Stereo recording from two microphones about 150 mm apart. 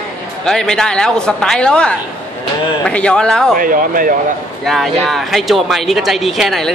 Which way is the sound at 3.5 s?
70° right (ahead or behind).